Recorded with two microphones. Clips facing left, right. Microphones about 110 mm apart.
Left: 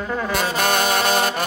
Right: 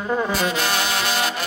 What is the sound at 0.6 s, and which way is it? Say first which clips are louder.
Brass instrument: left 4 dB; 50° left (ahead or behind).